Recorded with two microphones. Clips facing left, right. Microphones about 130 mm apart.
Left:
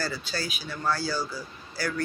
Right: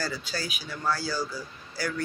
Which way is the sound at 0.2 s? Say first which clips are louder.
Left 1 dB; 15° right (ahead or behind).